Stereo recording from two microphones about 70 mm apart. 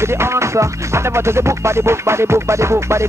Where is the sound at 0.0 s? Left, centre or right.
Right.